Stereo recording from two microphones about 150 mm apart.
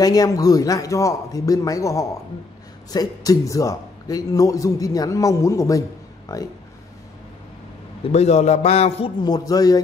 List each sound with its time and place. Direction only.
0.0 s a man's voice: 25° left (ahead or behind)
8.0 s a man's voice: 45° left (ahead or behind)
9.2 s a man's voice: 25° left (ahead or behind)